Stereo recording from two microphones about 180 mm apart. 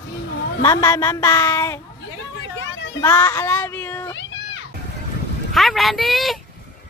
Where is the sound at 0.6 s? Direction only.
15° left (ahead or behind).